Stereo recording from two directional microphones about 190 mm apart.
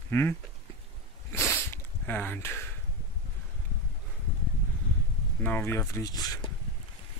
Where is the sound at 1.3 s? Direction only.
10° left (ahead or behind).